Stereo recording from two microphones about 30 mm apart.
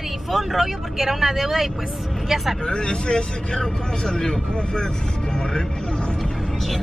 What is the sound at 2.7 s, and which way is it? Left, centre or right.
A man's voice, left.